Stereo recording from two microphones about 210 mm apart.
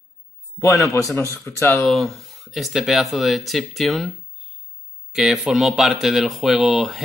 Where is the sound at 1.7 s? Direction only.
Centre (ahead or behind).